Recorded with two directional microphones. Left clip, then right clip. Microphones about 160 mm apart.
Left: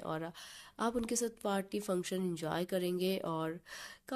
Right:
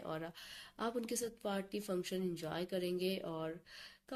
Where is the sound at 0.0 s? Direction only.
35° left (ahead or behind).